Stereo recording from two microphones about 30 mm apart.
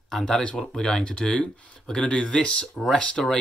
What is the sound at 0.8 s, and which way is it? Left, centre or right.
Speech, left.